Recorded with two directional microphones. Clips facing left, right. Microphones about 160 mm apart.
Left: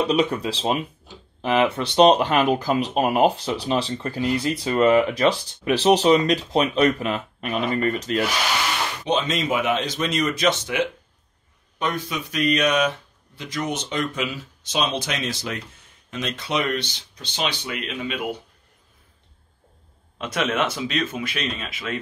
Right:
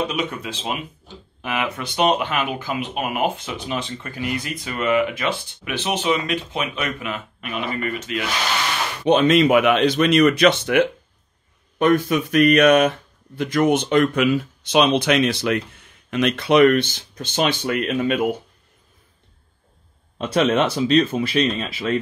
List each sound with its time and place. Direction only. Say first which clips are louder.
0.0 s speech: left 4 dB; 35° left (ahead or behind)
9.0 s speech: right 10 dB; 55° right (ahead or behind)
20.2 s speech: right 6 dB; 30° right (ahead or behind)